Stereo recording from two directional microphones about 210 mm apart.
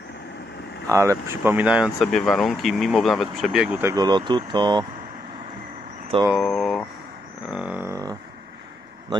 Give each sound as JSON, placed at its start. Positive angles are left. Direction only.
{"t": 0.8, "sound": "speech", "side_deg": -15}
{"t": 3.9, "sound": "speech", "side_deg": -20}
{"t": 6.3, "sound": "speech", "side_deg": 0}
{"t": 7.4, "sound": "a sound", "side_deg": -5}